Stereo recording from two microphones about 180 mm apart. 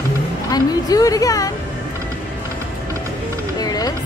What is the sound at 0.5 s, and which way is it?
A woman's voice, 20° left (ahead or behind).